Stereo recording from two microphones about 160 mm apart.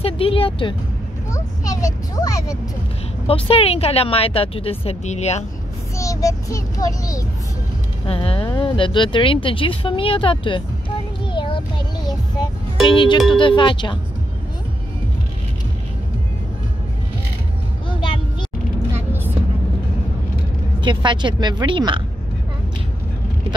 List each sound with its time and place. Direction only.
0.0 s vehicle: 35° left (ahead or behind)
1.3 s a child's voice: 20° left (ahead or behind)
3.3 s speech: 35° left (ahead or behind)
5.9 s a child's voice: 20° left (ahead or behind)
8.1 s speech: 35° left (ahead or behind)
11.3 s child singing: 30° left (ahead or behind)
12.8 s speech: 30° left (ahead or behind)
17.8 s vehicle: 30° left (ahead or behind)
18.9 s vehicle: 15° right (ahead or behind)
20.8 s speech: 30° right (ahead or behind)